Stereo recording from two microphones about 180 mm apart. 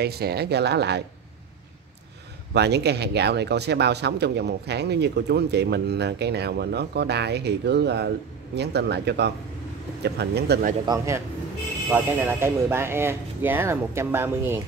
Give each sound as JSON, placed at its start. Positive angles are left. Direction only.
{"t": 0.0, "sound": "speech", "side_deg": -60}
{"t": 2.5, "sound": "speech", "side_deg": -65}
{"t": 10.9, "sound": "speech", "side_deg": -15}